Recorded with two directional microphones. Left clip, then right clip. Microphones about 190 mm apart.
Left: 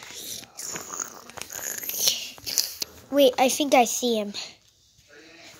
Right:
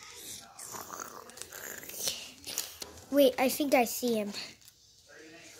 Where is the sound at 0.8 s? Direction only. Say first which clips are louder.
Left 6 dB; 5° left (ahead or behind).